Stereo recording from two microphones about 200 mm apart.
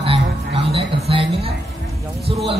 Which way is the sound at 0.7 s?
30° right (ahead or behind).